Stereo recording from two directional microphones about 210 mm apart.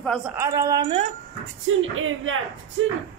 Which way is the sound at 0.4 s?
15° right (ahead or behind).